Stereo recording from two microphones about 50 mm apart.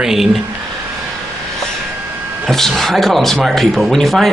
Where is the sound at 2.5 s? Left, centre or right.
Centre.